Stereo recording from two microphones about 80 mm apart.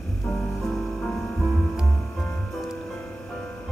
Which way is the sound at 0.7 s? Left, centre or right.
Centre.